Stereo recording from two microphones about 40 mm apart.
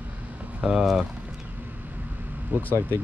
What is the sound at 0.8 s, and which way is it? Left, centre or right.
Speech, centre.